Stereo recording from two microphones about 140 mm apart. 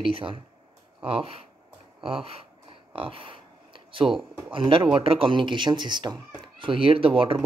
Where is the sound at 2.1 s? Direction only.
45° right (ahead or behind).